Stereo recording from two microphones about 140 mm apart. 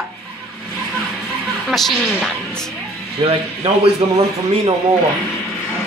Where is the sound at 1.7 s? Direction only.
Centre (ahead or behind).